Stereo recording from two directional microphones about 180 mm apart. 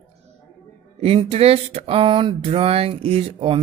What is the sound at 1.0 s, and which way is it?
Speech, 35° right (ahead or behind).